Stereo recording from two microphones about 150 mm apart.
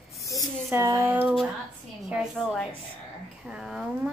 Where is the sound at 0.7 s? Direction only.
20° right (ahead or behind).